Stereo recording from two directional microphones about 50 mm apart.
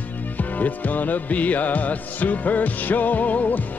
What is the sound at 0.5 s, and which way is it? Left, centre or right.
Music, left.